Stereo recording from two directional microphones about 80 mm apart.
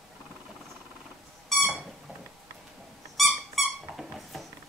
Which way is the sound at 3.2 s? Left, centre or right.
Centre.